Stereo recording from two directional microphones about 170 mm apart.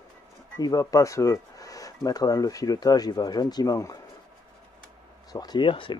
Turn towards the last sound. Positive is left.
turn(degrees=30)  # may be behind; listen again after turning